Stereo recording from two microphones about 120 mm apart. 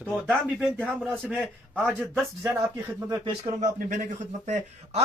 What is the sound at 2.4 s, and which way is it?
Speech, 25° right (ahead or behind).